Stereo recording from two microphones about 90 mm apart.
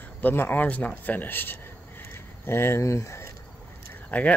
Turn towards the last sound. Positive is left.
turn(degrees=15)  # may be behind; listen again after turning